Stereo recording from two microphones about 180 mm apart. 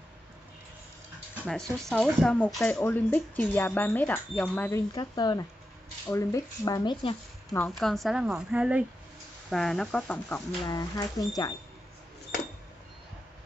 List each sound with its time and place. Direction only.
1.4 s speech: 5° left (ahead or behind); by 7.2 s 30° left (ahead or behind)
7.8 s a woman's voice: centre (ahead or behind)
10.6 s speech: 20° left (ahead or behind)